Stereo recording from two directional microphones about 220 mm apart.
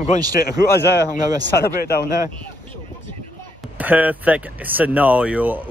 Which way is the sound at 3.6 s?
5° right (ahead or behind).